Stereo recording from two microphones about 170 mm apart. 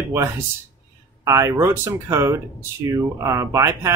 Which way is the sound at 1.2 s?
15° right (ahead or behind).